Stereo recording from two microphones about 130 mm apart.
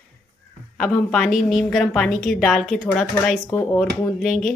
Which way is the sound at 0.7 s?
5° left (ahead or behind).